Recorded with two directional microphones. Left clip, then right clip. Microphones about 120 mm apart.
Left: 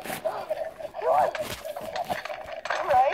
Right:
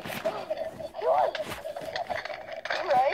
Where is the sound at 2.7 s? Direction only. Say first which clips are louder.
Left 3 dB; 20° right (ahead or behind).